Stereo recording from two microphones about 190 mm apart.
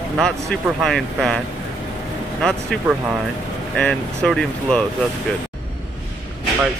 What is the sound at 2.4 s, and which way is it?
Speech, 5° left (ahead or behind).